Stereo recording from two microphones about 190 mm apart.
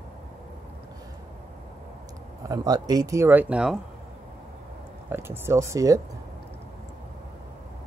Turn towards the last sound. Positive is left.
turn(degrees=-15)  # may be behind; listen again after turning